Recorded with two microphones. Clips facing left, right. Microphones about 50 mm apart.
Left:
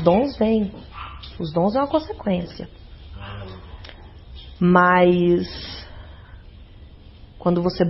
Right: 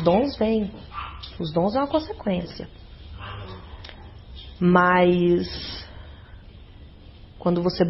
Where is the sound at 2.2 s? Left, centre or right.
Left.